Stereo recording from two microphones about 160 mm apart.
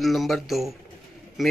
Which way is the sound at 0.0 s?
Centre (ahead or behind).